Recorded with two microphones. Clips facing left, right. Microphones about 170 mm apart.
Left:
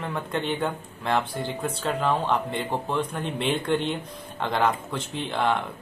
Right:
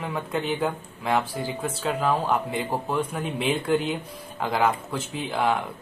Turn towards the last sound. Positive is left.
turn(degrees=-5)  # may be behind; listen again after turning